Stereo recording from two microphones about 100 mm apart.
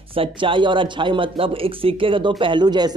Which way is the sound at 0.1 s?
60° right (ahead or behind).